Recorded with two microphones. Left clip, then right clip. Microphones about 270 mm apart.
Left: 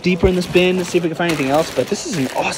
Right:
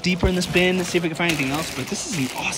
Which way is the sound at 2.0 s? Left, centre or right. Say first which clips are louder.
Left 5 dB; left.